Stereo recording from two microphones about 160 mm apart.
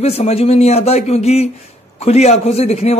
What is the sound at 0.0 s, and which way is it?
A man's voice, 40° left (ahead or behind).